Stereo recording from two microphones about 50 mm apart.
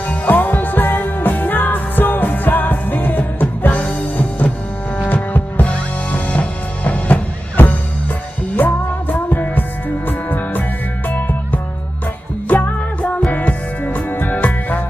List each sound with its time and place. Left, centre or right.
0.1 s music: left